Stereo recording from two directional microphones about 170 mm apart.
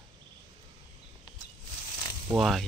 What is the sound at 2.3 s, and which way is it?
Speech, centre (ahead or behind).